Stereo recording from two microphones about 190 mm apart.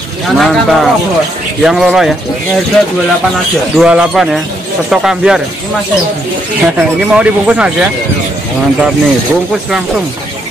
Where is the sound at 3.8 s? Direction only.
5° right (ahead or behind).